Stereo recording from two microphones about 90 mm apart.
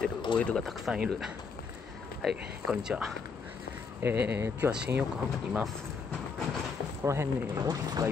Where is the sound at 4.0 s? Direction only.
25° right (ahead or behind).